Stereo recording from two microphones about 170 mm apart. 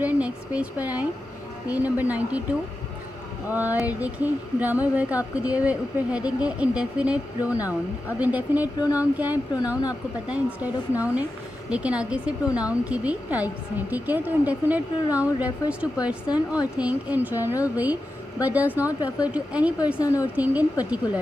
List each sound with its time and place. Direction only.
0.0 s speech: 5° right (ahead or behind)
3.4 s speech: 10° right (ahead or behind)
20.0 s a woman's voice: 20° left (ahead or behind)
20.3 s speech: 10° right (ahead or behind)